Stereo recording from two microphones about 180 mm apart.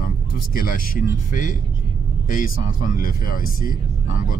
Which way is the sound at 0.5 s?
50° left (ahead or behind).